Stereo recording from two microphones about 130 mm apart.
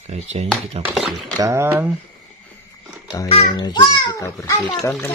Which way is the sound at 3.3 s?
45° left (ahead or behind).